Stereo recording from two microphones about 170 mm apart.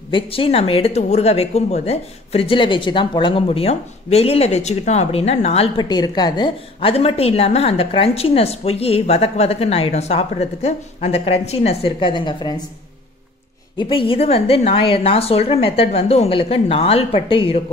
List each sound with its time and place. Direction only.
0.1 s speech: 30° left (ahead or behind)
5.8 s speech: 25° left (ahead or behind)
13.7 s speech: 30° left (ahead or behind)